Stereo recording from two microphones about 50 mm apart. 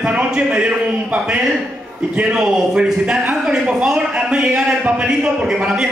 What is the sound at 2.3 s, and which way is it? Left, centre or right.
A man's voice, centre.